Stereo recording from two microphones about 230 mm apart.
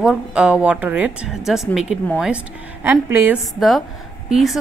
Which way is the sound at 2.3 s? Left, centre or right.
Centre.